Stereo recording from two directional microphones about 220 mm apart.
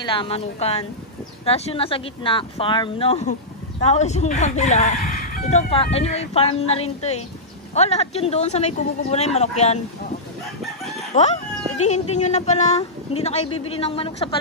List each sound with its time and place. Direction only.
0.0 s speech: 20° left (ahead or behind)
11.1 s speech: 30° left (ahead or behind)